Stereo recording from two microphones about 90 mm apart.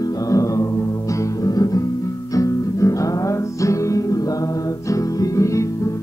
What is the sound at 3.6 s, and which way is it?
Music, 35° left (ahead or behind).